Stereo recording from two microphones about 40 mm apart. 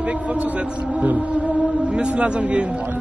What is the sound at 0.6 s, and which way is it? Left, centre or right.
Speech, right.